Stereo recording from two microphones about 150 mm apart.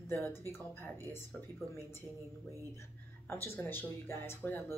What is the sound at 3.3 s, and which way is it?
Speech, 15° left (ahead or behind).